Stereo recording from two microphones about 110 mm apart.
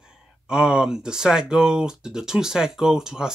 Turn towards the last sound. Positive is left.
turn(degrees=-5)  # may be behind; listen again after turning